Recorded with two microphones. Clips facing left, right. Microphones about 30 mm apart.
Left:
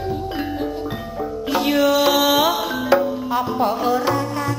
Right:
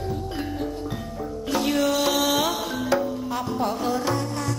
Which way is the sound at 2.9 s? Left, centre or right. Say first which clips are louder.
Left 7 dB; left.